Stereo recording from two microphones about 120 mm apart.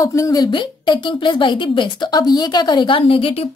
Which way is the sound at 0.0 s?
25° left (ahead or behind).